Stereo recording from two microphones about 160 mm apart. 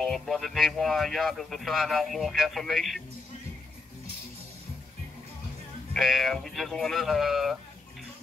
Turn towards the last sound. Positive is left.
turn(degrees=0)  # may be behind; listen again after turning